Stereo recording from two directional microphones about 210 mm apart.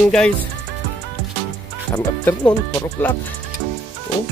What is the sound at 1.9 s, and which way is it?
Speech, 15° left (ahead or behind).